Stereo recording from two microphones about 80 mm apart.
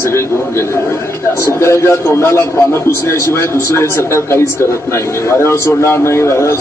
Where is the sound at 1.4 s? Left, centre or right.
Left.